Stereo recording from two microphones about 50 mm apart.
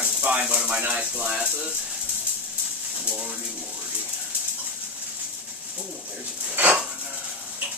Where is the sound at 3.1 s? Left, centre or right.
Right.